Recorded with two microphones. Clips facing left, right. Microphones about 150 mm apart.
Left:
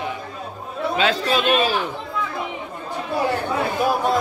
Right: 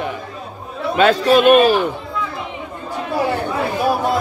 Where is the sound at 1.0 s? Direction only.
50° right (ahead or behind).